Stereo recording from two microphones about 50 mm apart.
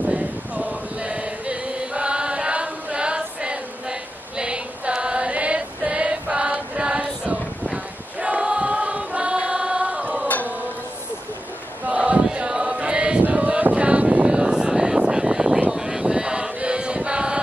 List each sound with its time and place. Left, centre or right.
0.0 s male singing: right
11.8 s chant: right
13.2 s a sound: right